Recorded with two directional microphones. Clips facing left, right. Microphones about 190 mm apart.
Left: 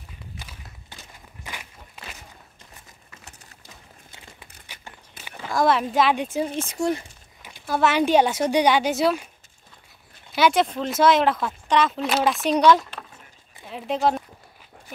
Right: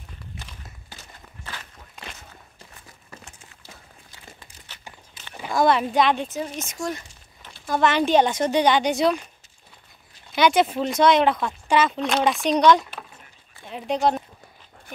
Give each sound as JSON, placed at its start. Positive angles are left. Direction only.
{"t": 1.4, "sound": "walk", "side_deg": 10}
{"t": 3.3, "sound": "a sound", "side_deg": 40}
{"t": 5.2, "sound": "a sound", "side_deg": 55}
{"t": 5.5, "sound": "speech", "side_deg": 0}
{"t": 6.5, "sound": "speech", "side_deg": 30}
{"t": 7.4, "sound": "speech", "side_deg": 10}
{"t": 10.3, "sound": "speech", "side_deg": 0}